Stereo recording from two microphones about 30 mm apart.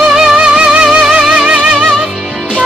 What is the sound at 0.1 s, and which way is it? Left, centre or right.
Music, centre.